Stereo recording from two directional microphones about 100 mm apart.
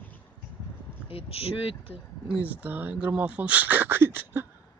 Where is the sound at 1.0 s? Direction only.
70° left (ahead or behind).